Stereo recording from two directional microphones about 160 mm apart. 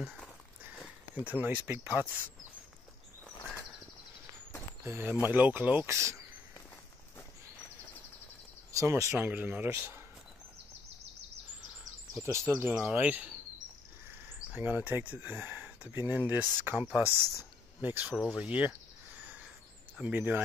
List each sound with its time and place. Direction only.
0.7 s speech: 10° right (ahead or behind)
4.8 s speech: 15° right (ahead or behind)
8.7 s speech: 15° right (ahead or behind)
12.2 s speech: 15° right (ahead or behind)
14.5 s speech: 10° right (ahead or behind)
20.0 s speech: 10° right (ahead or behind)